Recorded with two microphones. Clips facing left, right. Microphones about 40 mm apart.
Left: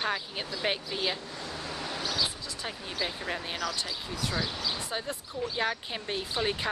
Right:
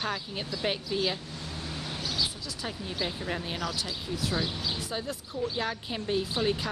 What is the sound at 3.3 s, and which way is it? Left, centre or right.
Speech, centre.